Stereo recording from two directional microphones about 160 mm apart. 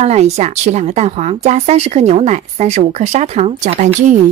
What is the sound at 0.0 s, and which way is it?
Speech, 45° right (ahead or behind).